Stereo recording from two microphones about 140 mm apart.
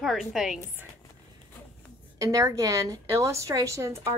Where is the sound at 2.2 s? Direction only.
25° right (ahead or behind).